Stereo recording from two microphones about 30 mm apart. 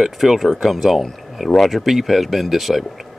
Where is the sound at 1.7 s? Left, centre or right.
Centre.